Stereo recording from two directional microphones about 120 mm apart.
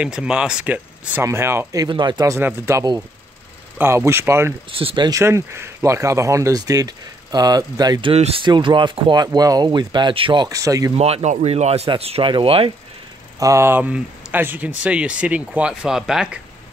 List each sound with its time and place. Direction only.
0.0 s speech: 10° right (ahead or behind)
1.2 s speech: 20° right (ahead or behind)
1.9 s speech: 40° right (ahead or behind)
2.3 s speech: 20° right (ahead or behind)
4.7 s speech: 45° right (ahead or behind)
5.1 s speech: 20° right (ahead or behind)
8.1 s speech: 55° right (ahead or behind); by 10.9 s 30° right (ahead or behind)
11.2 s speech: 70° right (ahead or behind); by 12.7 s 50° right (ahead or behind)
13.4 s speech: 25° right (ahead or behind); by 16.3 s 5° right (ahead or behind)